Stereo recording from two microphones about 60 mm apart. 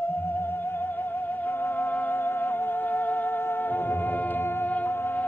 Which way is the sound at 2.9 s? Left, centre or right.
Left.